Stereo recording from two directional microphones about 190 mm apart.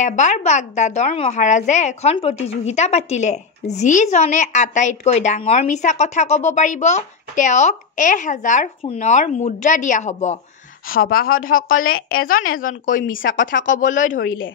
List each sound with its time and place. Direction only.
0.0 s a woman's voice: 40° left (ahead or behind)
10.9 s a woman's voice: 50° left (ahead or behind)